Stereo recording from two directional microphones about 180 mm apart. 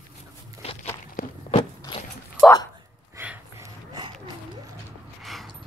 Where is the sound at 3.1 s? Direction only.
10° right (ahead or behind).